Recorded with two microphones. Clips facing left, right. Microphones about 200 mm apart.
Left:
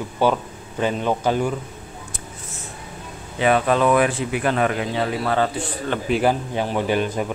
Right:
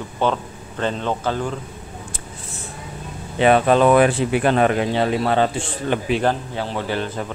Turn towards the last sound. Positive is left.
turn(degrees=15)  # may be behind; listen again after turning